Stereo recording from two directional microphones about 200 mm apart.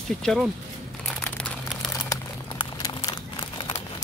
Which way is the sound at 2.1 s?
20° left (ahead or behind).